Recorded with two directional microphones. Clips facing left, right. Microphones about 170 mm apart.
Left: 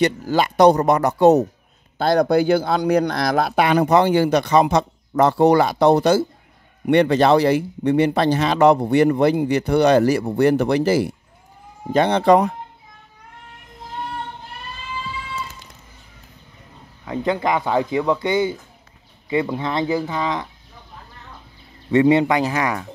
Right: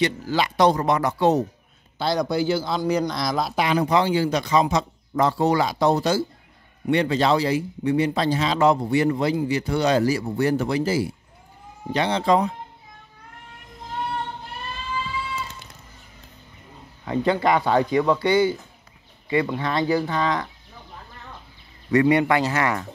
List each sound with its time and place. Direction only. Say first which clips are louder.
0.0 s speech: left 4 dB; 50° left (ahead or behind); by 11.1 s 65° left (ahead or behind)
11.9 s speech: left 6 dB; 55° left (ahead or behind)
17.0 s speech: right 1 dB; 5° left (ahead or behind)
21.9 s speech: left 3 dB; 25° left (ahead or behind)